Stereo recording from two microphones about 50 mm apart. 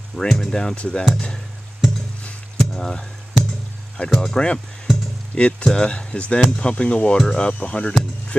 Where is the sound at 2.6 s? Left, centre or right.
Centre.